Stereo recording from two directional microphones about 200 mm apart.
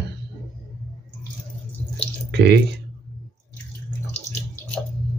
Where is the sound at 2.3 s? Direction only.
55° right (ahead or behind).